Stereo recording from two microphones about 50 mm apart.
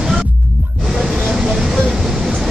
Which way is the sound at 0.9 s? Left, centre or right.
Centre.